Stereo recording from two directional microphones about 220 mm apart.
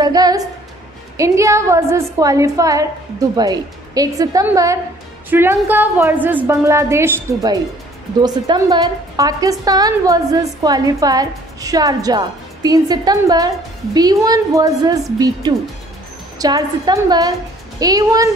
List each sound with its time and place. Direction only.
0.0 s a woman's voice: 15° right (ahead or behind)